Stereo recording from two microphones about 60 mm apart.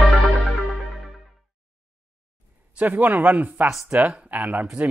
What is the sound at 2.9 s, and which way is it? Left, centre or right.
A man's voice, right.